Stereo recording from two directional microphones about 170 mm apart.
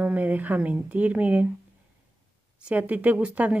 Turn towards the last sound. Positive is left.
turn(degrees=-10)  # may be behind; listen again after turning